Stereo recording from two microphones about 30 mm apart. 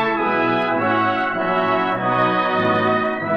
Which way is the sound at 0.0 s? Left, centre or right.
Centre.